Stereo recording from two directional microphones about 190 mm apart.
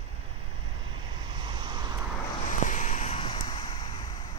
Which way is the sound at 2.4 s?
40° left (ahead or behind).